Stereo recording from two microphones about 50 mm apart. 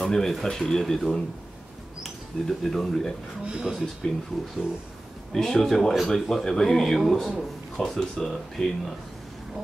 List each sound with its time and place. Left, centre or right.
0.0 s speech: centre
3.4 s speech: centre
4.0 s speech: centre
5.3 s a man's voice: centre